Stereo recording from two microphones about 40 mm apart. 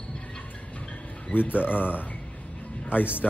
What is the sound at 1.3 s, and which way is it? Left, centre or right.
Speech, left.